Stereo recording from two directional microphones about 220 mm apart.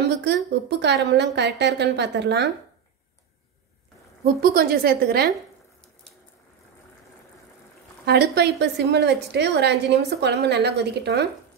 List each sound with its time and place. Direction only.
0.0 s a woman's voice: 50° right (ahead or behind)
4.2 s a woman's voice: 40° right (ahead or behind)
8.0 s a woman's voice: 45° right (ahead or behind)